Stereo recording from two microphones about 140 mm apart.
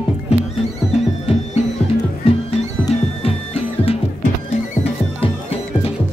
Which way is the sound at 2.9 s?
45° left (ahead or behind).